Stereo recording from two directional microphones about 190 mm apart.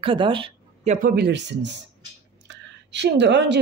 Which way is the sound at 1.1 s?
60° right (ahead or behind).